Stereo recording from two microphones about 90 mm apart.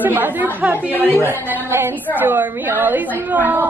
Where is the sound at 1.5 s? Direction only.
25° right (ahead or behind).